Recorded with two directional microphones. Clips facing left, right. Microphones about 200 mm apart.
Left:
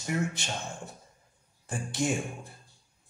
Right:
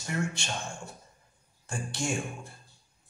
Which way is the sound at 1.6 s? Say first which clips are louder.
Left 3 dB; 20° left (ahead or behind).